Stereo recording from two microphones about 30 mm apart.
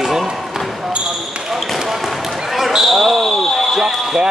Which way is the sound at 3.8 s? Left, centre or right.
Centre.